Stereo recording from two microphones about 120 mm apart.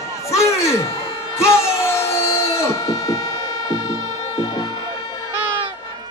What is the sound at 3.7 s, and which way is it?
Music, 35° left (ahead or behind).